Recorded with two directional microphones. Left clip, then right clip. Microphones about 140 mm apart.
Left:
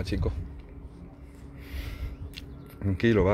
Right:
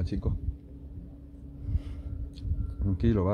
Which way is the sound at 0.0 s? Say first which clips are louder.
Left 4 dB; 25° right (ahead or behind).